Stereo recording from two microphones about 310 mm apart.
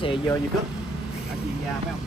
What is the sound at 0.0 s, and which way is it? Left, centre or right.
Speech, centre.